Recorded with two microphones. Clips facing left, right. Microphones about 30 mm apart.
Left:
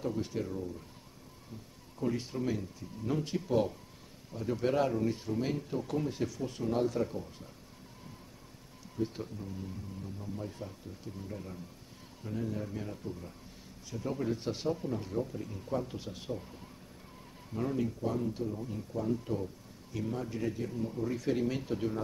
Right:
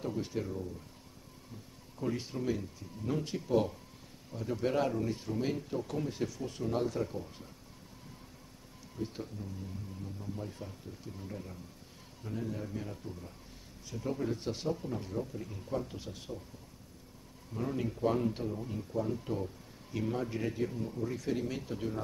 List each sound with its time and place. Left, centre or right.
0.0 s speech: centre
2.0 s speech: centre
8.9 s speech: centre
17.5 s speech: centre
18.0 s speech: right
18.5 s speech: centre
20.7 s speech: centre